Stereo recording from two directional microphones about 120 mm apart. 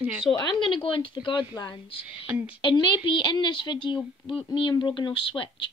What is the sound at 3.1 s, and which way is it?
A woman's voice, 40° left (ahead or behind).